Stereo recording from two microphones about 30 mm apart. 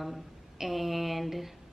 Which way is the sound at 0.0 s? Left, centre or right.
Centre.